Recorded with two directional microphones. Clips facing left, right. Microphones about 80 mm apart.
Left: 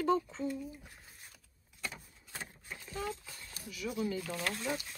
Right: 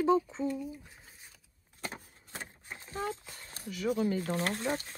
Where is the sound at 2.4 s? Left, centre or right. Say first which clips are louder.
Right 1 dB; right.